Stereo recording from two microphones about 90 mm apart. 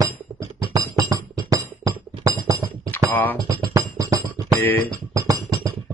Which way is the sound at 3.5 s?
40° right (ahead or behind).